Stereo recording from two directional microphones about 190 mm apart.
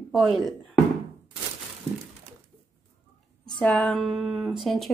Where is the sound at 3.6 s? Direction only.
5° left (ahead or behind).